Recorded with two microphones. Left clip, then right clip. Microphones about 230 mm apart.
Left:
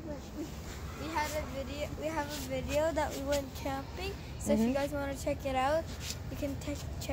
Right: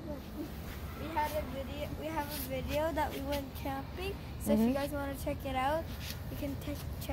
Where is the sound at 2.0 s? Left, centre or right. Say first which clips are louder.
Left 2 dB; centre.